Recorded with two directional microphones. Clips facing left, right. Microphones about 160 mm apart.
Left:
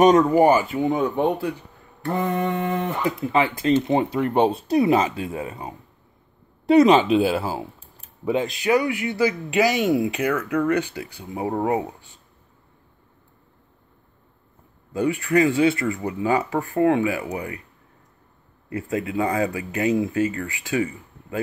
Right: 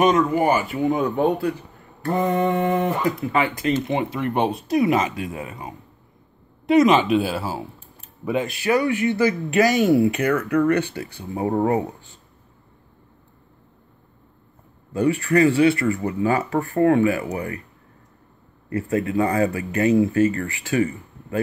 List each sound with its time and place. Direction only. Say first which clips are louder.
0.0 s speech: left 3 dB; 35° left (ahead or behind)
2.1 s mantra: right 3 dB; 35° right (ahead or behind)
3.2 s speech: left 1 dB; 25° left (ahead or behind)
8.3 s speech: left 1 dB; 25° left (ahead or behind)
14.9 s speech: right 2 dB; 15° left (ahead or behind)
18.7 s speech: right 3 dB; 15° left (ahead or behind)